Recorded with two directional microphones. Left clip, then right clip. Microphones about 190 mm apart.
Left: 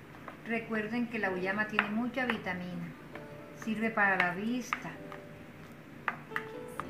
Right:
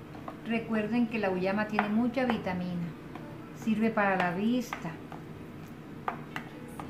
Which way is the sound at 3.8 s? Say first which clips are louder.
Even; 15° right (ahead or behind).